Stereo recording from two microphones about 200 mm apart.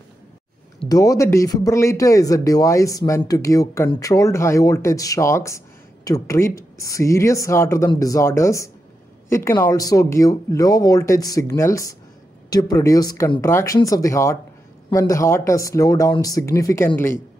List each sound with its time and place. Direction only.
0.8 s speech: 15° left (ahead or behind)